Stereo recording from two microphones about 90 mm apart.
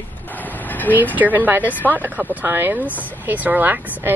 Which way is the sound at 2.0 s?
20° right (ahead or behind).